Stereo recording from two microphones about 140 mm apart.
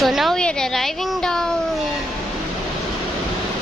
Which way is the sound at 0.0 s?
Centre (ahead or behind).